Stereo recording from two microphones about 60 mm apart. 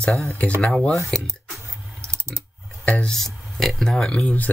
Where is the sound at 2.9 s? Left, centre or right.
Left.